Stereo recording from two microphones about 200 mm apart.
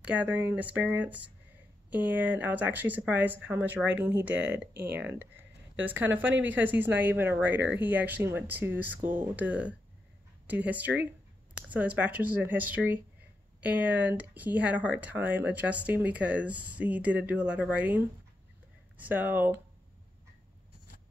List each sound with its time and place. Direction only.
0.0 s speech: 5° right (ahead or behind)
4.6 s speech: 55° right (ahead or behind)
5.0 s speech: 10° right (ahead or behind)